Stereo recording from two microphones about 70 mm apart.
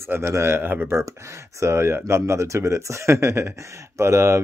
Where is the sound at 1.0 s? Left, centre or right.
Right.